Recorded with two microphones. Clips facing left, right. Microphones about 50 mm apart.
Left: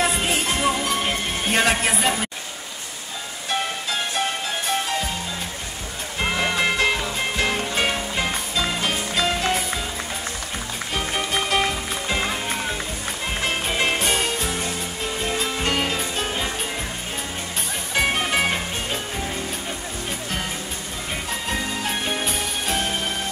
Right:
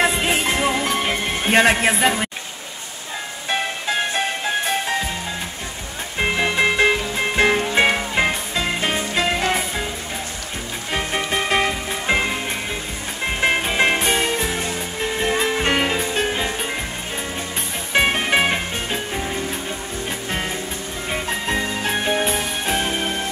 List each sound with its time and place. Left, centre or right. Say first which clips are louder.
0.0 s music: right 3 dB; right
6.3 s music: right 3 dB; right
7.3 s music: right 8 dB; right
10.9 s music: right 3 dB; right
13.4 s music: right 6 dB; right
15.1 s music: right 6 dB; right
17.9 s music: right 4 dB; right
21.1 s music: right 4 dB; right